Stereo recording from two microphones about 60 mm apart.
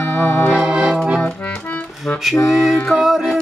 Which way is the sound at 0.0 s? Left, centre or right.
Left.